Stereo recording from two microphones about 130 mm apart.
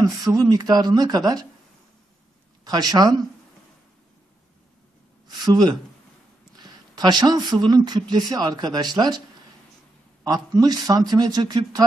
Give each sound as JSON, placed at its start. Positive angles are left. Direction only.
{"t": 0.3, "sound": "speech", "side_deg": -30}
{"t": 2.6, "sound": "speech", "side_deg": -30}
{"t": 5.3, "sound": "speech", "side_deg": -35}
{"t": 10.2, "sound": "speech", "side_deg": -30}